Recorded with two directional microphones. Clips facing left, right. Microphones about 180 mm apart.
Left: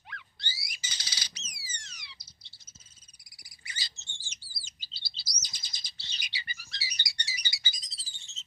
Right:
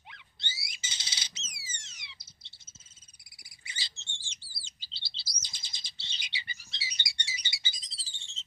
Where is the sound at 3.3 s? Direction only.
25° right (ahead or behind).